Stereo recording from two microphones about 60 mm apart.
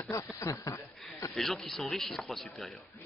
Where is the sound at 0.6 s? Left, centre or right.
Left.